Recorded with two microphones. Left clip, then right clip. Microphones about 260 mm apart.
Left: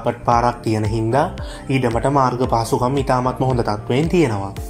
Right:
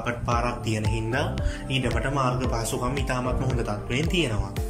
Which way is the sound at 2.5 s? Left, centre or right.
Centre.